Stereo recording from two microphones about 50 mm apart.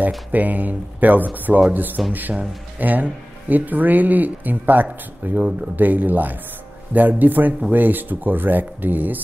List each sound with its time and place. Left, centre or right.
0.3 s speech: right